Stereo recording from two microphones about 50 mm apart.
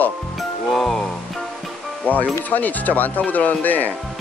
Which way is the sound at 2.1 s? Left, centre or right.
Left.